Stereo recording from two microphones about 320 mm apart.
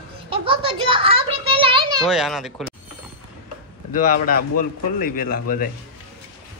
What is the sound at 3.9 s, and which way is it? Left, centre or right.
A man's voice, left.